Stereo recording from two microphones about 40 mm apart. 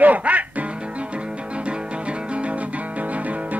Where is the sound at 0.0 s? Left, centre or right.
Right.